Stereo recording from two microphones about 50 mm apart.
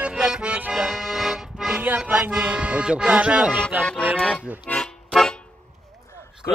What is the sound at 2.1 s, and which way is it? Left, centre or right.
Speech, right.